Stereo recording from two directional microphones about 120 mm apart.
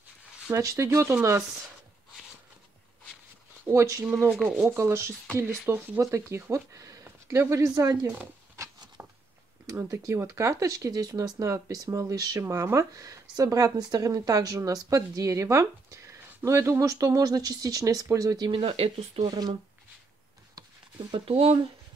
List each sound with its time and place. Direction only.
0.5 s speech: 25° right (ahead or behind)
3.6 s speech: 25° right (ahead or behind)
4.1 s speech: 5° left (ahead or behind)
4.6 s speech: 20° right (ahead or behind)
9.0 s a sound: 15° right (ahead or behind)
9.7 s speech: 25° right (ahead or behind)
18.5 s speech: 50° right (ahead or behind)
19.2 s speech: 35° right (ahead or behind)
21.1 s speech: 50° right (ahead or behind)